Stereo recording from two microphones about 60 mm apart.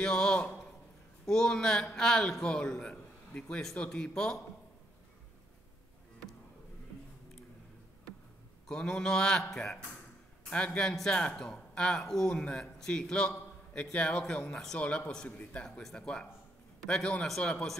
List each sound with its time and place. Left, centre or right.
0.0 s a man's voice: centre
8.6 s speech: centre
10.5 s a man's voice: centre